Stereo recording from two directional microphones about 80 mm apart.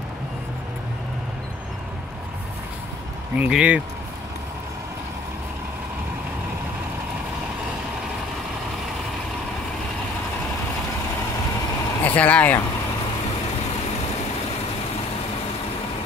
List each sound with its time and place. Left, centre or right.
3.3 s speech: centre
12.0 s speech: centre